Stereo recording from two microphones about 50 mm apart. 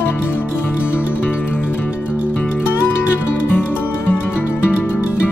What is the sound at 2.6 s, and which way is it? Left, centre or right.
Music, left.